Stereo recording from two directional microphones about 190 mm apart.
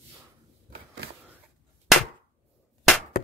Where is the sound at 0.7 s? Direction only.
60° right (ahead or behind).